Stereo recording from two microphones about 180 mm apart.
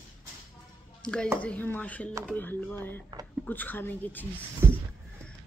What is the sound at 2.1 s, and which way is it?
Speech, 15° right (ahead or behind).